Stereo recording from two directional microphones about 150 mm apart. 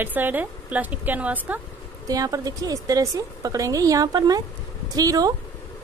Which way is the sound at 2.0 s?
25° right (ahead or behind).